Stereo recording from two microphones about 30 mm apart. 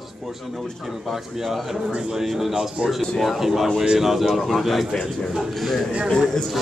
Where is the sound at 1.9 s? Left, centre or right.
Right.